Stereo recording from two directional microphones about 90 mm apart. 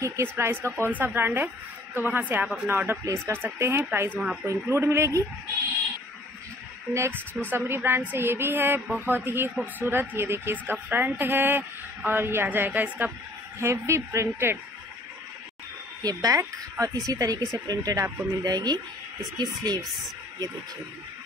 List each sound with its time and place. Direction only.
0.0 s speech: 30° right (ahead or behind); by 2.7 s 15° right (ahead or behind)
2.7 s speech: 25° right (ahead or behind)
4.2 s speech: 5° right (ahead or behind)
4.5 s speech: 30° right (ahead or behind)
6.9 s speech: 30° right (ahead or behind)
13.6 s speech: 30° right (ahead or behind)
16.0 s speech: 45° right (ahead or behind)
18.0 s speech: 20° right (ahead or behind)
18.3 s speech: 45° right (ahead or behind)